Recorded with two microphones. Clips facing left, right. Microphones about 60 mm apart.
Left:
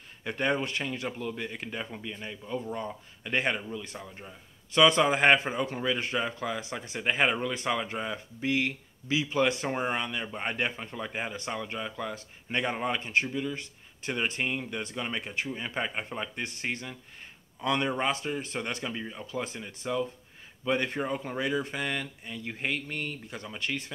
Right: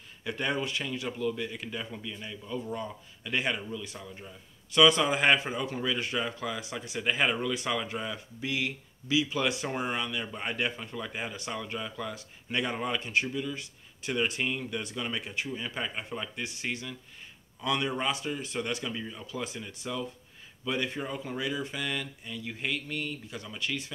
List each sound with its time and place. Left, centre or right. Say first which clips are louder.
0.2 s speech: left 2 dB; left
6.6 s speech: even; left
19.4 s speech: left 1 dB; left
20.6 s speech: left 3 dB; left